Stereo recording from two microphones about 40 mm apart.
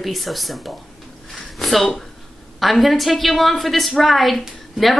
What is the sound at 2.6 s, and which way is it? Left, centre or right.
A woman's voice, centre.